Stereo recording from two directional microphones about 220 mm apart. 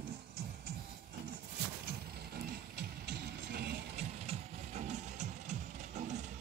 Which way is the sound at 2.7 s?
45° right (ahead or behind).